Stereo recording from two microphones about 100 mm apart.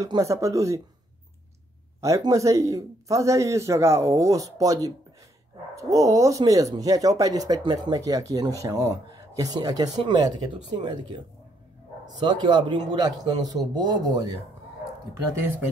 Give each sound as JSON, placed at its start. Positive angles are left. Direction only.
{"t": 0.2, "sound": "speech", "side_deg": -30}
{"t": 2.0, "sound": "speech", "side_deg": -30}
{"t": 12.2, "sound": "speech", "side_deg": -50}
{"t": 15.1, "sound": "speech", "side_deg": -25}